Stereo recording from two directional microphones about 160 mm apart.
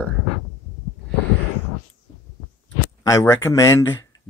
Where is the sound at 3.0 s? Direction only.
20° left (ahead or behind).